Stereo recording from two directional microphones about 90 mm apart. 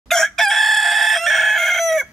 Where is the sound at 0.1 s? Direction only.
5° left (ahead or behind).